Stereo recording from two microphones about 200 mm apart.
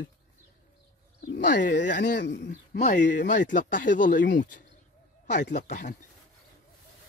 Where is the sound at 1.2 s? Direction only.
60° left (ahead or behind).